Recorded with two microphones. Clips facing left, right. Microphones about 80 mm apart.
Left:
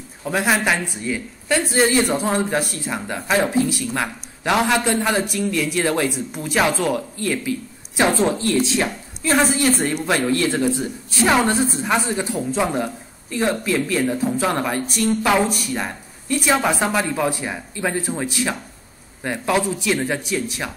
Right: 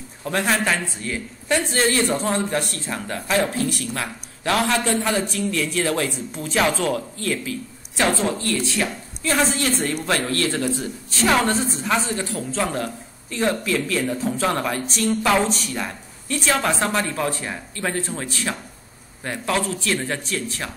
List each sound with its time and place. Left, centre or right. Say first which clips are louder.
0.2 s a woman's voice: left 2 dB; centre; by 8.9 s left
9.4 s a woman's voice: left 3 dB; centre